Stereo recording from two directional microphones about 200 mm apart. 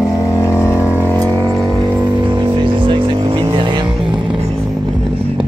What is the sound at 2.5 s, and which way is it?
Vehicle, 25° right (ahead or behind).